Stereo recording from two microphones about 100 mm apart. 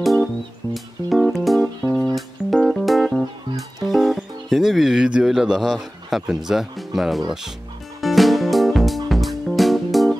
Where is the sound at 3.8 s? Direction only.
Centre (ahead or behind).